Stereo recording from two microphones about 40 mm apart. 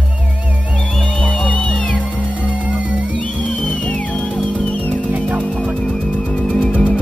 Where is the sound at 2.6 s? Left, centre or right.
Right.